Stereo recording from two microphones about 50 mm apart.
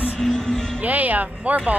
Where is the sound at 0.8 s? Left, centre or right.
Right.